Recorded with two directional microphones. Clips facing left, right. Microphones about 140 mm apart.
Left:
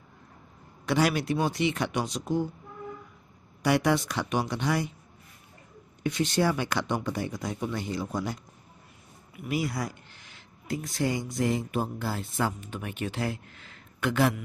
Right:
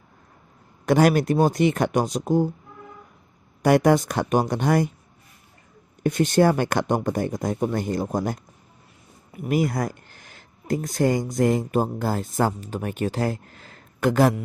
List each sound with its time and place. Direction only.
0.8 s speech: 50° right (ahead or behind)
3.6 s speech: 45° right (ahead or behind)
6.0 s speech: 50° right (ahead or behind)